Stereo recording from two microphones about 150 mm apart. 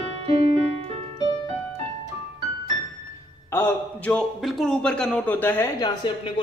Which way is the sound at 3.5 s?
10° left (ahead or behind).